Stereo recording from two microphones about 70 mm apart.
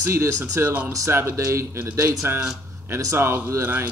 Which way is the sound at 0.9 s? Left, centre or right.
Right.